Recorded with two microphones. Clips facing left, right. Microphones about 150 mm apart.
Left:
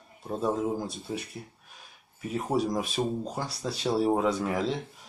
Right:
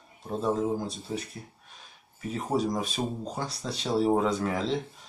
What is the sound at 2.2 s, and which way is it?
Speech, 5° left (ahead or behind).